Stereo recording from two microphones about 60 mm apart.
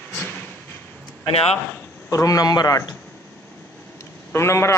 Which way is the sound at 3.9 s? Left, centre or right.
Left.